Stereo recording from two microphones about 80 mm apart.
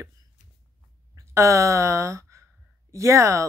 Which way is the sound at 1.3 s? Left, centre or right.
Right.